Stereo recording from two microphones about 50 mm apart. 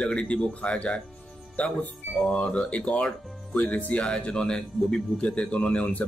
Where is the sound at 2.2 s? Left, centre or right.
Centre.